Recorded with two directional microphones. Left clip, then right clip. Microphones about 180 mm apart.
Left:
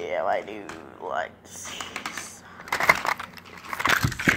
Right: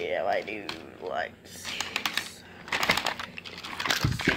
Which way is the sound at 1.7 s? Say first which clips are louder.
Right 3 dB; 40° right (ahead or behind).